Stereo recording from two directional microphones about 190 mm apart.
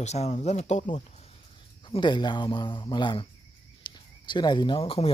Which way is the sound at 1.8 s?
25° left (ahead or behind).